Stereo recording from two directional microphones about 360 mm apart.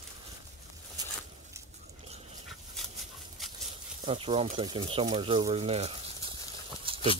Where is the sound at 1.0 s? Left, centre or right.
Centre.